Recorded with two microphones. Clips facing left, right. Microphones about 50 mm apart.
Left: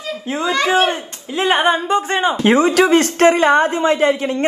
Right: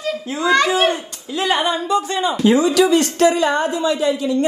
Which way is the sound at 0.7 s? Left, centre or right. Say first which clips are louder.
Left 2 dB; left.